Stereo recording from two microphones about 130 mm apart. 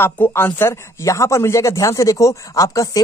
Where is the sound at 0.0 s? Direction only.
15° left (ahead or behind).